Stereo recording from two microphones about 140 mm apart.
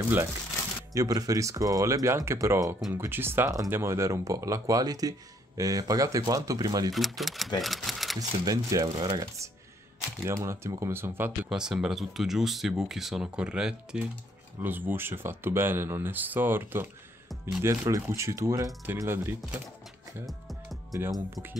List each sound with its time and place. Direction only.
0.9 s speech: 25° right (ahead or behind)
6.9 s speech: centre (ahead or behind)
7.6 s typewriter: centre (ahead or behind)
8.2 s speech: 25° right (ahead or behind)
11.4 s speech: 5° right (ahead or behind)
20.2 s music: centre (ahead or behind)
20.9 s speech: 20° right (ahead or behind)